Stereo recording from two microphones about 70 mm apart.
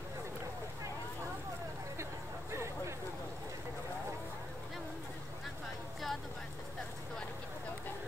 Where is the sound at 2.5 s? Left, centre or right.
Right.